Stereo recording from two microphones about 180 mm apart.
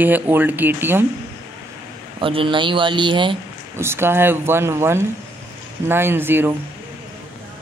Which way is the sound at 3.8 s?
15° right (ahead or behind).